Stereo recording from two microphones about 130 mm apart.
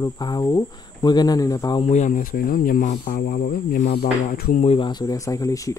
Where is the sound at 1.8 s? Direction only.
65° left (ahead or behind); by 4.7 s 90° left.